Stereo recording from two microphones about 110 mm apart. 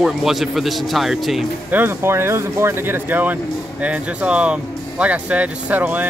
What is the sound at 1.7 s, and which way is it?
Speech, 20° right (ahead or behind).